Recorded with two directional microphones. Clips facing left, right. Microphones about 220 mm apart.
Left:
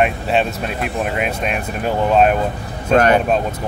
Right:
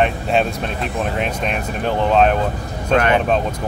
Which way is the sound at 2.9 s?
40° left (ahead or behind).